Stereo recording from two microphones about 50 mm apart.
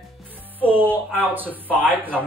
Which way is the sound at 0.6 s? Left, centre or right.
Right.